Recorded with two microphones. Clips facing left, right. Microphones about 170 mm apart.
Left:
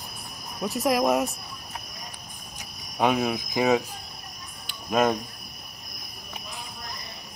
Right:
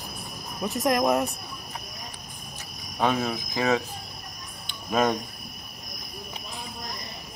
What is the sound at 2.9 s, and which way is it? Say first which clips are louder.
Speech: left 2 dB; 10° left (ahead or behind).